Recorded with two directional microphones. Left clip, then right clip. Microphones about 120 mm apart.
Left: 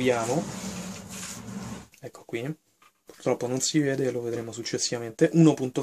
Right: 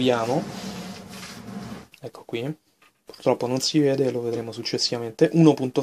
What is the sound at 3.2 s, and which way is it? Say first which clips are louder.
Speech: right 4 dB; 30° right (ahead or behind).